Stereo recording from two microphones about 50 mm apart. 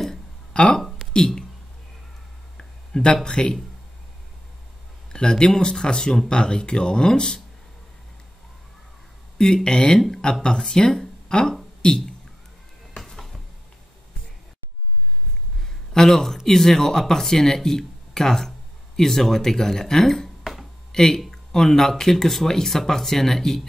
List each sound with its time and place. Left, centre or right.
0.0 s a sound: centre
0.7 s a sound: centre
1.1 s speech: centre
2.5 s a sound: centre
3.3 s speech: centre
5.1 s speech: centre
9.4 s speech: centre
9.9 s speech: centre
10.4 s speech: centre
15.9 s speech: centre